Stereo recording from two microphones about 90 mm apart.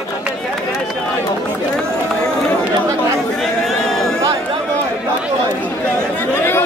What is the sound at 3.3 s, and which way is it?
Chatter, 5° left (ahead or behind).